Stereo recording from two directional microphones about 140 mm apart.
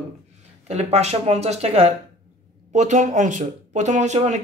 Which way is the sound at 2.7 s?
60° right (ahead or behind).